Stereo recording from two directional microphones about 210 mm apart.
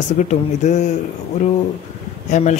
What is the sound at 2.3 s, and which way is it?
Speech, 35° left (ahead or behind).